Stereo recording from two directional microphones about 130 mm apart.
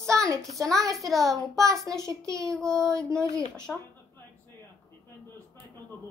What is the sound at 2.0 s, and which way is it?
Speech, 25° right (ahead or behind).